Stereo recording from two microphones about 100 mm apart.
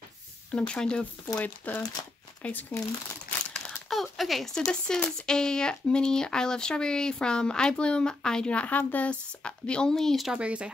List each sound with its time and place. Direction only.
0.5 s speech: 10° left (ahead or behind)
3.3 s crumpling: 15° left (ahead or behind)
3.9 s speech: centre (ahead or behind)
10.3 s speech: 10° right (ahead or behind)